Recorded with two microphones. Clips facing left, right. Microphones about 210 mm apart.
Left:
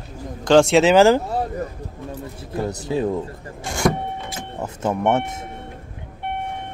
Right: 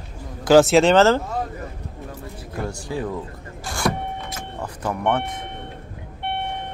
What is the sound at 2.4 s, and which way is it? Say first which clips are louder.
Speech: left 4 dB; 20° left (ahead or behind).